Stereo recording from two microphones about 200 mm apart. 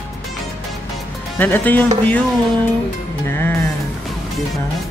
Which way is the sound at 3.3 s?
10° left (ahead or behind).